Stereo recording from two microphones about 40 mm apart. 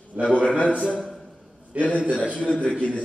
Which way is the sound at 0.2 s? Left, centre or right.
Left.